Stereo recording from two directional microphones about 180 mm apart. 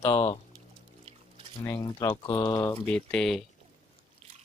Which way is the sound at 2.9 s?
5° left (ahead or behind).